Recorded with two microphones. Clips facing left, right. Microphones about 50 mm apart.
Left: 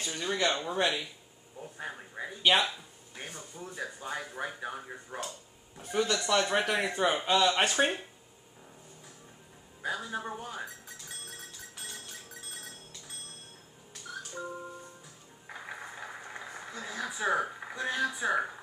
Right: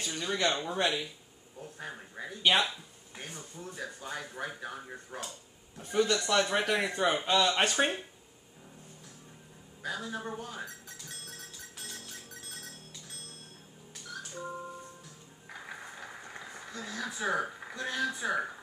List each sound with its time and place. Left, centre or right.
0.0 s speech: centre
9.8 s speech: centre
15.4 s a sound: centre